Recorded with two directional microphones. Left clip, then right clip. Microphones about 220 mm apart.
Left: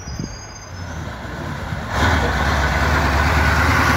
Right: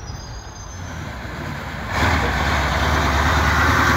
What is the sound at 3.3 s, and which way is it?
Vehicle, 30° left (ahead or behind).